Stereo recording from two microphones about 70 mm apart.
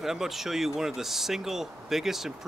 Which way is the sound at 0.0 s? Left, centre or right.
Centre.